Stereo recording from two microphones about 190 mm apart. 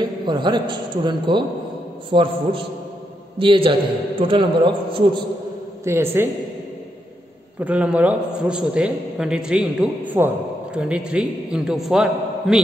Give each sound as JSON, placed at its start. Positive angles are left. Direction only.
{"t": 0.3, "sound": "a man's voice", "side_deg": -25}
{"t": 5.9, "sound": "a man's voice", "side_deg": -15}
{"t": 7.6, "sound": "a man's voice", "side_deg": -5}